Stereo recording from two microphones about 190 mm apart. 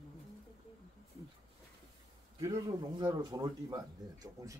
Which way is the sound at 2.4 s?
20° right (ahead or behind).